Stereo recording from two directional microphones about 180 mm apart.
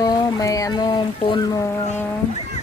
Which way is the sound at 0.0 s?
20° left (ahead or behind).